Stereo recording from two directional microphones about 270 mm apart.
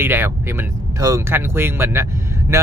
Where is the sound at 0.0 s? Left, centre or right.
Centre.